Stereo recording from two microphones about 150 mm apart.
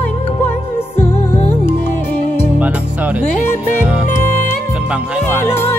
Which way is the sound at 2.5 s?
10° right (ahead or behind).